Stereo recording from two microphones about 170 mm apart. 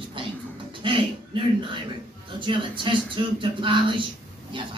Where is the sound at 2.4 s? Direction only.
30° right (ahead or behind).